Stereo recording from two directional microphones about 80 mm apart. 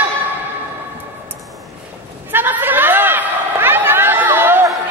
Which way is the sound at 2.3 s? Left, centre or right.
Right.